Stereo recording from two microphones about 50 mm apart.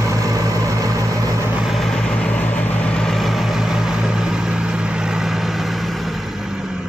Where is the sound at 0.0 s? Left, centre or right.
Right.